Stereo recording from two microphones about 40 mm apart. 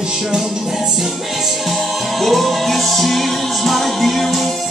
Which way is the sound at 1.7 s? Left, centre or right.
Centre.